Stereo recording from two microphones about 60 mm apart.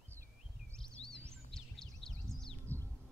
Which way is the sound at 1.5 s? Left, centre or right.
Centre.